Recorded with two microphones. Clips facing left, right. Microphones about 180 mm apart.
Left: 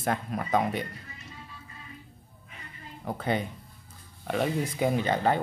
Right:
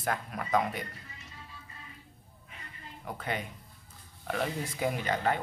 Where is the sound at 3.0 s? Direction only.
30° left (ahead or behind).